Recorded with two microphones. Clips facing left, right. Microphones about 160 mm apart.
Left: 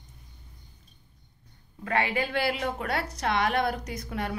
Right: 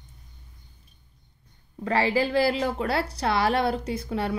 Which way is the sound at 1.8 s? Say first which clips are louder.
Right 4 dB; 30° right (ahead or behind).